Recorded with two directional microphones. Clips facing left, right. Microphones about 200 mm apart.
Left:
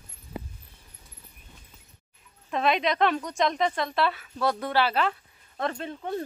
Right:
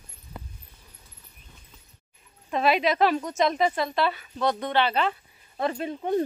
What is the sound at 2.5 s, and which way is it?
A woman's voice, 5° right (ahead or behind).